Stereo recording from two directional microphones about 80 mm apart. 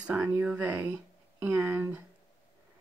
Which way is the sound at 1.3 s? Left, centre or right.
Right.